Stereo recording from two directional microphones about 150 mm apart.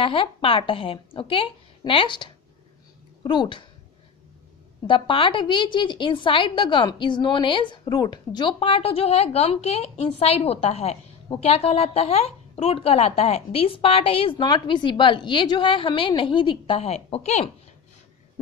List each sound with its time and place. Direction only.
0.0 s a woman's voice: 35° left (ahead or behind)
4.8 s a woman's voice: 35° left (ahead or behind)